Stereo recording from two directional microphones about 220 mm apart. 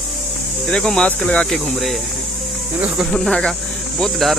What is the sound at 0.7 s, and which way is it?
Speech, 5° left (ahead or behind).